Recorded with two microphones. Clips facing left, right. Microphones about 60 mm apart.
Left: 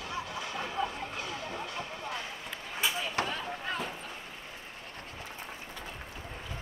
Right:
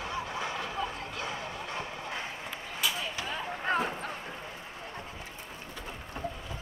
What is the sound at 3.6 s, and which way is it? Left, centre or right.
Bow-wow, right.